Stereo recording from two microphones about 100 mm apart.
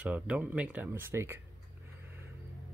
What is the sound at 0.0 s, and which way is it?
Speech, 15° right (ahead or behind).